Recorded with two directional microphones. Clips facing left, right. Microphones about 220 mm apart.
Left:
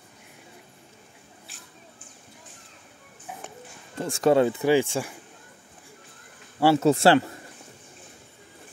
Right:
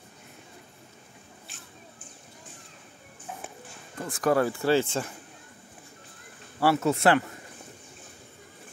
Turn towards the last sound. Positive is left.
turn(degrees=30)  # may be behind; listen again after turning